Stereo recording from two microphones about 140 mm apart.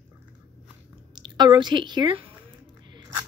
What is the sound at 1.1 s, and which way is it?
A woman's voice, 30° right (ahead or behind).